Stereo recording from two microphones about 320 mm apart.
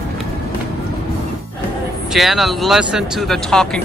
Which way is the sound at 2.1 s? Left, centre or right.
Centre.